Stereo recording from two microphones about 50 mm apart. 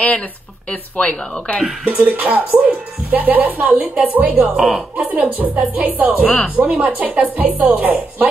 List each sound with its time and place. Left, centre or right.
0.7 s speech: left
2.0 s speech: right
6.2 s speech: left
6.5 s speech: right